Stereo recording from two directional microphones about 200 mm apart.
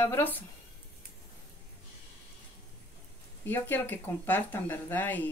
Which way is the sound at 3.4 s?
10° left (ahead or behind).